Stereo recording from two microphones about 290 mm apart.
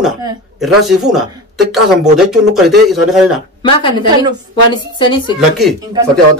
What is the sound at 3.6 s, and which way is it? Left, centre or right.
Speech, centre.